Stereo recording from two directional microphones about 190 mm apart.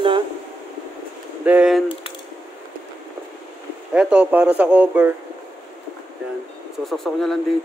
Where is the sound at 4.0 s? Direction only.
10° right (ahead or behind).